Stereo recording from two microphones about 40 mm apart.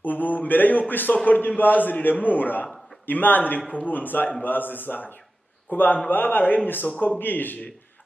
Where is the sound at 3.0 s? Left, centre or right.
Left.